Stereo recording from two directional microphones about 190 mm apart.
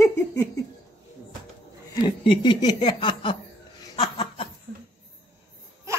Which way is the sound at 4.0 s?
30° left (ahead or behind).